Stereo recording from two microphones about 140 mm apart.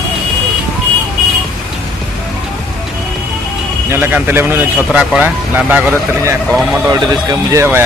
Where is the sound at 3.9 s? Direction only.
15° right (ahead or behind).